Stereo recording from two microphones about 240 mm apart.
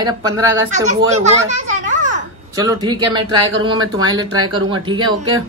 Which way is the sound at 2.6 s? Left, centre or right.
Centre.